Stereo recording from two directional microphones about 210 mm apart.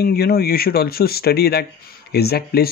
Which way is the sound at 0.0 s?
45° left (ahead or behind).